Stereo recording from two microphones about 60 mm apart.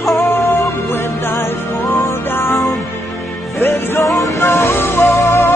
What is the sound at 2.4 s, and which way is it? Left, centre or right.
Music, centre.